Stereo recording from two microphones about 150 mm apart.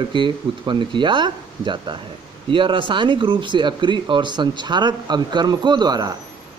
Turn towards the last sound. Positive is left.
turn(degrees=-25)  # may be behind; listen again after turning